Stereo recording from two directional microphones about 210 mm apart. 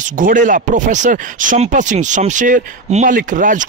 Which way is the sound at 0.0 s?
40° right (ahead or behind).